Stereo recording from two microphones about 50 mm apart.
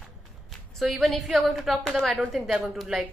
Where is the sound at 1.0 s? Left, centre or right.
Centre.